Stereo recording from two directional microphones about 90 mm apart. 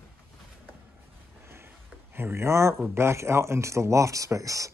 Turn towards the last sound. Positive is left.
turn(degrees=-40)  # may be behind; listen again after turning